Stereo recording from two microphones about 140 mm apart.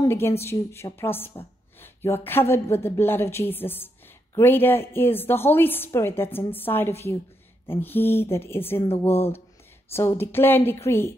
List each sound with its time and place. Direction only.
0.0 s a woman's voice: 15° left (ahead or behind)